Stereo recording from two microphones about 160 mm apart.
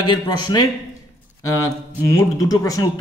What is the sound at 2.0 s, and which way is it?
Speech, 20° left (ahead or behind).